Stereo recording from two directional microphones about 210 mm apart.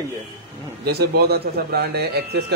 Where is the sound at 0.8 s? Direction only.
50° right (ahead or behind).